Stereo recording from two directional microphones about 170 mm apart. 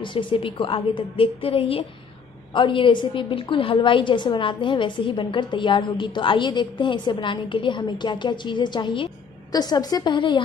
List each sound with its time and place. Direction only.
0.0 s a woman's voice: 30° left (ahead or behind)